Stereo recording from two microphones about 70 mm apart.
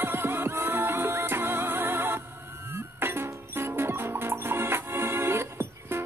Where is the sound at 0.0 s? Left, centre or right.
Right.